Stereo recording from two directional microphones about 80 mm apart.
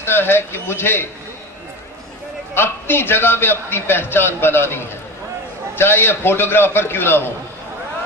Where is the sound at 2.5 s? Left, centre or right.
Left.